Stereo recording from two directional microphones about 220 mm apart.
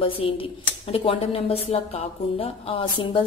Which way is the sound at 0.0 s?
25° left (ahead or behind).